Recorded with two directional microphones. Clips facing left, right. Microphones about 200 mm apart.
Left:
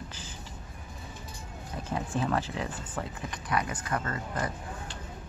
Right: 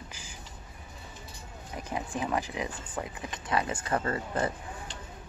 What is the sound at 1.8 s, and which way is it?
Speech, 15° right (ahead or behind).